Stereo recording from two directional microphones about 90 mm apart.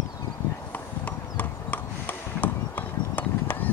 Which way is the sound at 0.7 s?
15° left (ahead or behind).